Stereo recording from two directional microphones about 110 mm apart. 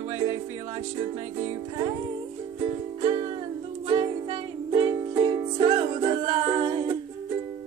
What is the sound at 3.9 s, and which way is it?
Music, 40° right (ahead or behind).